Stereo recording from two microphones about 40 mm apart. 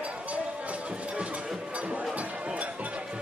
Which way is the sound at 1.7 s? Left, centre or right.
Right.